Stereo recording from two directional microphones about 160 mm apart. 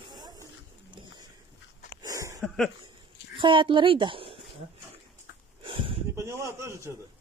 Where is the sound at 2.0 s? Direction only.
20° right (ahead or behind).